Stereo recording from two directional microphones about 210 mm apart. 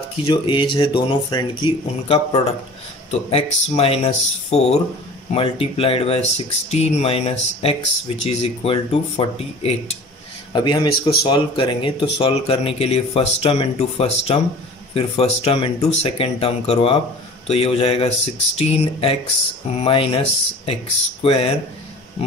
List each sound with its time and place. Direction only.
0.3 s speech: 20° left (ahead or behind)